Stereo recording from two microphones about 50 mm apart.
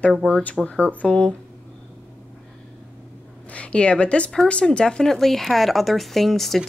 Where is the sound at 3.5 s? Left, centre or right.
Left; by 6.6 s centre.